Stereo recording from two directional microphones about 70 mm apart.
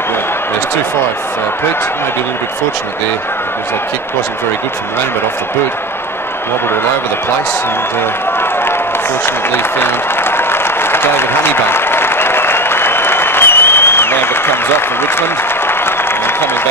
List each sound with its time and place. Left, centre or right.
9.2 s applause: left